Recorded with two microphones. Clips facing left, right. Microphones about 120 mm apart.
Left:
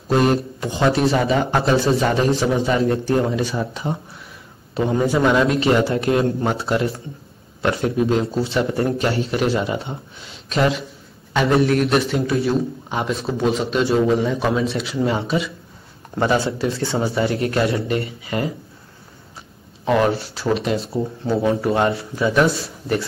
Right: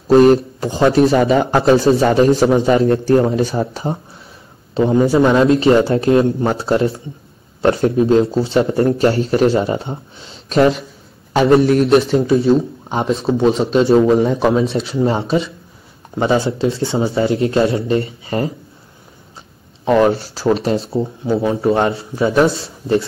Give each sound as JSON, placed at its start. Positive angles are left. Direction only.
{"t": 0.6, "sound": "speech", "side_deg": -35}
{"t": 1.9, "sound": "a man's voice", "side_deg": -25}
{"t": 2.3, "sound": "a man's voice", "side_deg": -45}
{"t": 2.8, "sound": "speech", "side_deg": -35}
{"t": 4.7, "sound": "a man's voice", "side_deg": -25}
{"t": 11.7, "sound": "a man's voice", "side_deg": -30}
{"t": 19.8, "sound": "a man's voice", "side_deg": -25}